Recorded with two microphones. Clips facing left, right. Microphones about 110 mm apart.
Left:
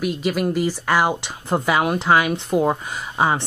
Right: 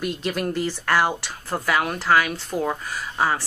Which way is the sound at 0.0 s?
5° left (ahead or behind).